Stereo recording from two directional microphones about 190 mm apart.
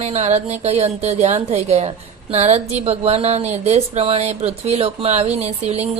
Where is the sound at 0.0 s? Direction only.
35° right (ahead or behind).